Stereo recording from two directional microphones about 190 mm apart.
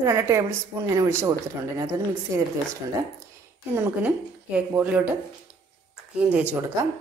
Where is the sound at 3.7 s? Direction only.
10° right (ahead or behind).